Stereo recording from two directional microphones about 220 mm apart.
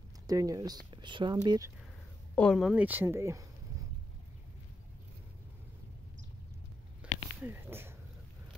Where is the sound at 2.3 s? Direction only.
Centre (ahead or behind).